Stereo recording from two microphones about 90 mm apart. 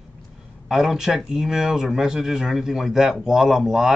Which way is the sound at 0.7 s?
5° right (ahead or behind).